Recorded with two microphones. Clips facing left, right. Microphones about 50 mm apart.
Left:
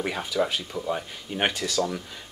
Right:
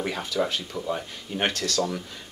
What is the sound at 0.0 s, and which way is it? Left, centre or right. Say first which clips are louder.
Speech: left 1 dB; centre.